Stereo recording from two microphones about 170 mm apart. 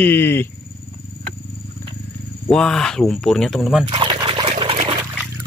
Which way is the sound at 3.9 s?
30° right (ahead or behind).